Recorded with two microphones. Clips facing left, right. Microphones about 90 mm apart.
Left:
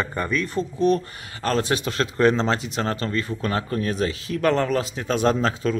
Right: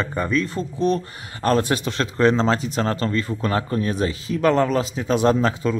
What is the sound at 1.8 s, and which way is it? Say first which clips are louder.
A man's voice: right 1 dB; 30° right (ahead or behind).